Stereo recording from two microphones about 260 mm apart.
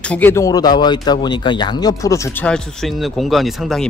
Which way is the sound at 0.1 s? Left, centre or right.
Centre.